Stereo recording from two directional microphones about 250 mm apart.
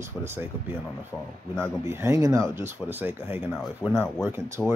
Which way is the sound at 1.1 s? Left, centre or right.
Centre.